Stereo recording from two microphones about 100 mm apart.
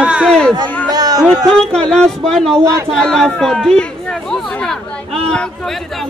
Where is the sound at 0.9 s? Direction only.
40° right (ahead or behind).